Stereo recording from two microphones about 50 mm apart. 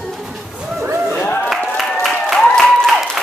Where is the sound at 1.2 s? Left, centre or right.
Left.